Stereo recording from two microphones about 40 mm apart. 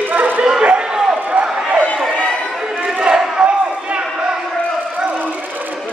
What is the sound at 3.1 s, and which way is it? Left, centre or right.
Battle cry, centre.